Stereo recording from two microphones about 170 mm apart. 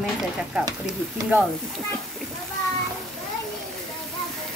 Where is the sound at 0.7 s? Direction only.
20° right (ahead or behind).